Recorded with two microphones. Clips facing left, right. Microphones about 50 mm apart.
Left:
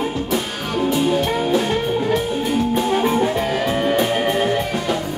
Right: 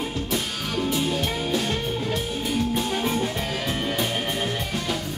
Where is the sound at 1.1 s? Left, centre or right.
Centre.